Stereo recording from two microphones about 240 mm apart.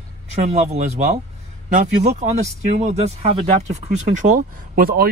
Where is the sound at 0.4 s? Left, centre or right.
Right.